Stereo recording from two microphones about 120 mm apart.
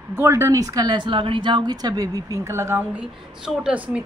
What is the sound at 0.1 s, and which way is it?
A woman's voice, 20° right (ahead or behind).